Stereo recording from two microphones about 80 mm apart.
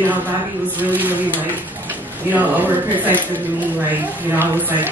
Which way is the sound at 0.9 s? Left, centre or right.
Right.